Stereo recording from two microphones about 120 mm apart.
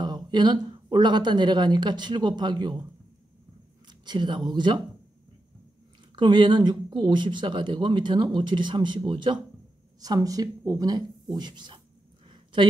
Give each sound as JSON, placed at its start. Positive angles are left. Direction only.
{"t": 0.0, "sound": "speech", "side_deg": -35}
{"t": 3.8, "sound": "speech", "side_deg": -40}
{"t": 6.1, "sound": "speech", "side_deg": -40}